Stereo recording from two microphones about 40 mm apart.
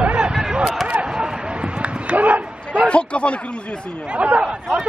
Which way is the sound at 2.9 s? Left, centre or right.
Left.